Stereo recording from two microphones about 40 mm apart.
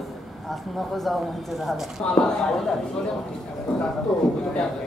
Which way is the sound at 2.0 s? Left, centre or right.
Centre.